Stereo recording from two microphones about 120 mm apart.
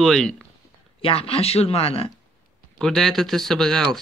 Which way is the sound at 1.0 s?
55° left (ahead or behind).